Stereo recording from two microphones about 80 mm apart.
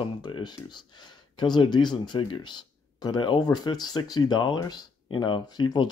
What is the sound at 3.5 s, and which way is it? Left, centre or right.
Speech, left.